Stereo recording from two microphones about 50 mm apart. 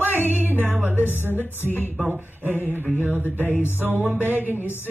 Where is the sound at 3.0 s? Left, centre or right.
Right.